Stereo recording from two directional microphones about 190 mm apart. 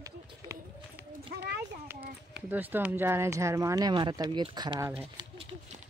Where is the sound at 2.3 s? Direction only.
10° right (ahead or behind).